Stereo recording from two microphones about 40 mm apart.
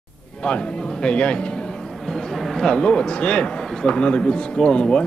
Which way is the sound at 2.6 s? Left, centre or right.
Left.